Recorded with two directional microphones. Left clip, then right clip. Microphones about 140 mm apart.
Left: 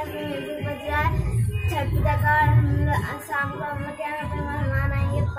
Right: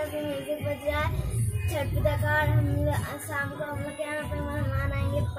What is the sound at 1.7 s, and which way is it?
Speech, 20° right (ahead or behind).